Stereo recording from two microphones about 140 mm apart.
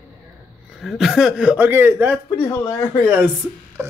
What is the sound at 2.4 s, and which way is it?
Speech, 15° left (ahead or behind).